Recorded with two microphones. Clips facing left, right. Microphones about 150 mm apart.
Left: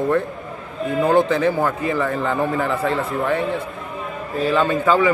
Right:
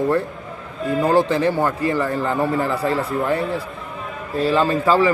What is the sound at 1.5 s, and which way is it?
A man's voice, centre (ahead or behind).